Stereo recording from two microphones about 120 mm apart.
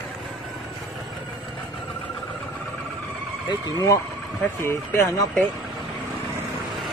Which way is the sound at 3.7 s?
25° left (ahead or behind).